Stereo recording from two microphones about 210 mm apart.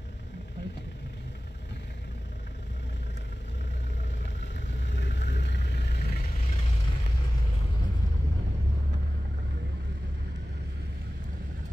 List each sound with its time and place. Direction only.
4.4 s vehicle: 60° left (ahead or behind)